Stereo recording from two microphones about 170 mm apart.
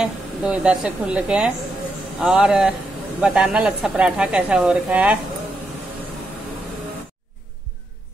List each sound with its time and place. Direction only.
0.0 s speech: 5° right (ahead or behind)